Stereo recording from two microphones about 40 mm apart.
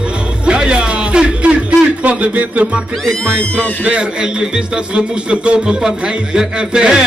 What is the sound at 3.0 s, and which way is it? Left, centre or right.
Music, centre.